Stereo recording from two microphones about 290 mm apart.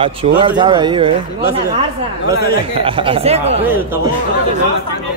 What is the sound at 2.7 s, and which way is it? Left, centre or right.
Speech, centre.